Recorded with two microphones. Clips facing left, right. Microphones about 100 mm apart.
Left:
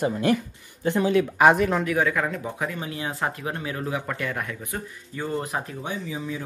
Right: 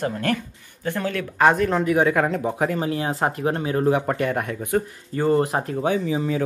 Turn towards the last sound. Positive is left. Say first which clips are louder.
# right 8 dB
turn(degrees=-60)  # may be behind; listen again after turning